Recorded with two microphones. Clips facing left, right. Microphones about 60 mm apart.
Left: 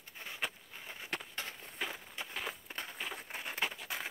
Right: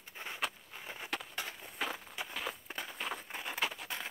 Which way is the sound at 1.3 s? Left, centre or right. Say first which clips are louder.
Right 2 dB; centre.